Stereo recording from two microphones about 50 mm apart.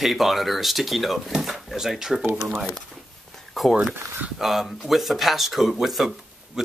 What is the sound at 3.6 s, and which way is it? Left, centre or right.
Speech, centre.